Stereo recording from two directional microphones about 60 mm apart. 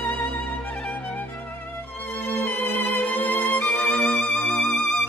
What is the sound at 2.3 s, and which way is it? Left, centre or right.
Music, left.